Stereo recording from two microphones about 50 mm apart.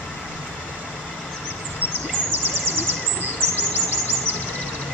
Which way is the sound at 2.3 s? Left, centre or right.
Right.